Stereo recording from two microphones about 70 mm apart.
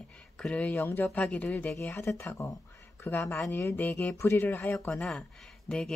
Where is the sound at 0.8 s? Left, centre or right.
Left.